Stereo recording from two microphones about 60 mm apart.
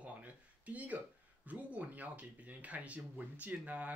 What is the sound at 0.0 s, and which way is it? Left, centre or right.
Speech, right.